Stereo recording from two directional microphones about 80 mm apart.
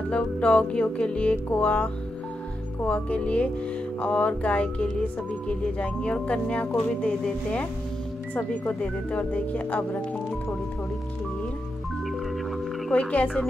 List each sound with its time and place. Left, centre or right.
0.1 s speech: centre
12.9 s speech: centre